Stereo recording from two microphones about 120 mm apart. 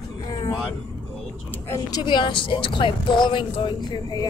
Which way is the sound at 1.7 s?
30° left (ahead or behind).